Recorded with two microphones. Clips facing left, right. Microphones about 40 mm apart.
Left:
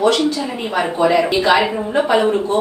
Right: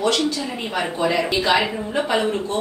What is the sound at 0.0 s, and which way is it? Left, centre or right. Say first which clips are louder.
A woman's voice: left 5 dB; centre.